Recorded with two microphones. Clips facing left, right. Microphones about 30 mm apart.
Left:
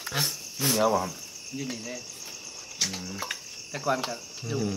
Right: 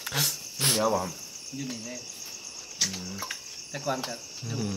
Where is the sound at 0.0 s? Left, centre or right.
Right.